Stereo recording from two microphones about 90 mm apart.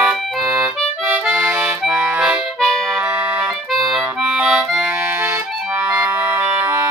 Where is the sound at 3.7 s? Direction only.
Centre (ahead or behind).